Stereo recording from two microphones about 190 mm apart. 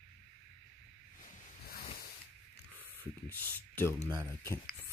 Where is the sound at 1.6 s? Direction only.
50° left (ahead or behind).